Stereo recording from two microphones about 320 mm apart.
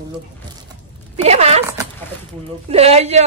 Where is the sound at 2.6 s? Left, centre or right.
Centre.